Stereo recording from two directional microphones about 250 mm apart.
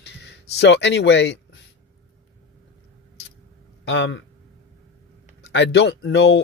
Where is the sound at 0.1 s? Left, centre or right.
Left.